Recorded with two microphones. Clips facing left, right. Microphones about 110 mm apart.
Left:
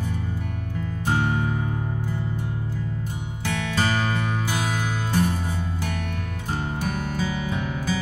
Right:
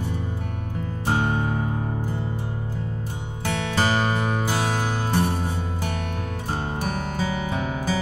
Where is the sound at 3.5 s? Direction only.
30° right (ahead or behind).